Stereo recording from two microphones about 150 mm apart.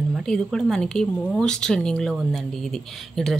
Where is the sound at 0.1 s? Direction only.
Centre (ahead or behind).